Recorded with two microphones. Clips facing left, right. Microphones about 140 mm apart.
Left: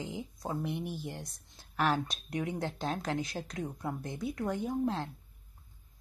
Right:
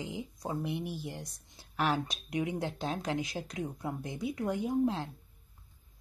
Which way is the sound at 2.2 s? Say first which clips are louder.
Right 3 dB; 10° right (ahead or behind).